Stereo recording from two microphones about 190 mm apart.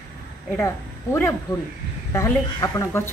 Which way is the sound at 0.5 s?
10° left (ahead or behind).